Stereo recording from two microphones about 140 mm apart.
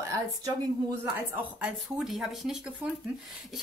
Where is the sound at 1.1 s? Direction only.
15° right (ahead or behind).